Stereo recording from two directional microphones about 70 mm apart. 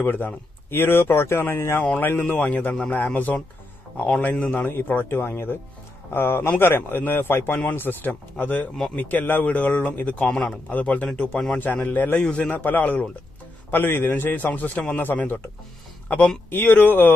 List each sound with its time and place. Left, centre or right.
0.0 s a man's voice: left
10.2 s speech: centre
10.7 s a man's voice: centre
12.5 s a man's voice: left
16.4 s a man's voice: left